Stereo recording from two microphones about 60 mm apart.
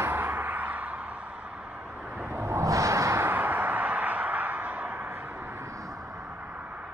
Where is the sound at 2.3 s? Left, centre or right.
Right.